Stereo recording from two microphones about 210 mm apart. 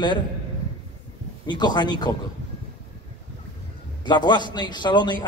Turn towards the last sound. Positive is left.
turn(degrees=20)  # may be behind; listen again after turning